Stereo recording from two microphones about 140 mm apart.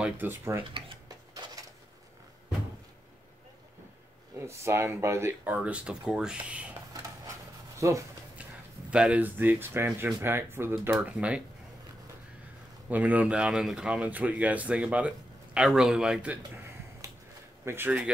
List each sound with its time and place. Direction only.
0.0 s speech: 15° right (ahead or behind)
0.7 s cutlery: 40° right (ahead or behind)
1.3 s a sound: 25° right (ahead or behind)
4.4 s speech: 20° right (ahead or behind)
7.8 s speech: 20° right (ahead or behind)
8.9 s speech: 10° right (ahead or behind)
12.9 s speech: 10° right (ahead or behind)
17.0 s a sound: 25° right (ahead or behind)
17.6 s speech: 15° right (ahead or behind)